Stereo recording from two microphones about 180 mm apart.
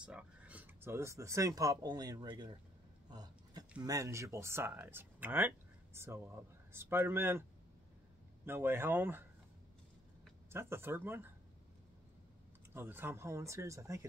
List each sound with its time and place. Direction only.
0.0 s speech: 5° right (ahead or behind); by 2.5 s 25° right (ahead or behind)
3.1 s a sound: 20° right (ahead or behind)
3.8 s speech: 15° right (ahead or behind)
8.5 s speech: 10° right (ahead or behind)
10.5 s speech: 15° right (ahead or behind)
12.7 s speech: 10° right (ahead or behind)